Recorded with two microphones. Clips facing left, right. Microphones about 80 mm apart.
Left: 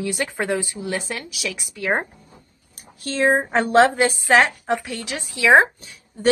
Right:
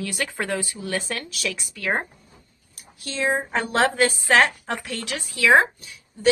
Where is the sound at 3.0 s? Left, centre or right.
Left.